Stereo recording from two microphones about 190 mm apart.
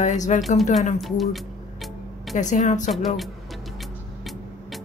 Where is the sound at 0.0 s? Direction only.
40° left (ahead or behind).